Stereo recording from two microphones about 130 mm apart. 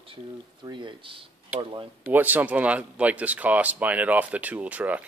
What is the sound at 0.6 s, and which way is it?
Speech, 35° right (ahead or behind).